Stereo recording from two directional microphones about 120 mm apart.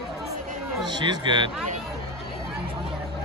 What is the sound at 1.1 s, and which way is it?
Speech, 40° right (ahead or behind).